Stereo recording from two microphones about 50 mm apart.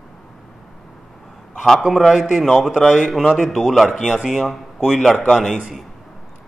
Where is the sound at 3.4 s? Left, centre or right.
Centre.